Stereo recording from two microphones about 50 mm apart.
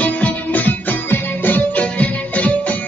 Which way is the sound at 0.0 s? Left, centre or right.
Left.